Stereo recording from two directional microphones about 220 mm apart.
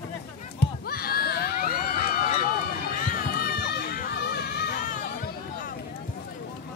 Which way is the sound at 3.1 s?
40° left (ahead or behind).